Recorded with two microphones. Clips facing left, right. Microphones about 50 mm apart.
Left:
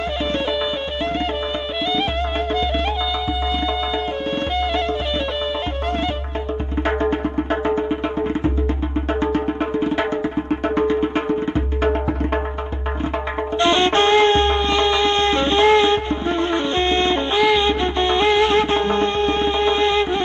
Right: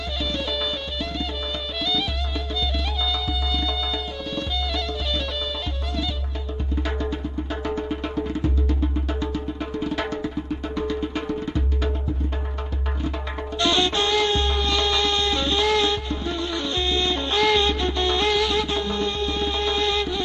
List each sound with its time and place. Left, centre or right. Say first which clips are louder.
6.9 s music: left 12 dB; left
9.8 s music: left 4 dB; left
13.6 s music: left 6 dB; left
17.3 s music: left 1 dB; centre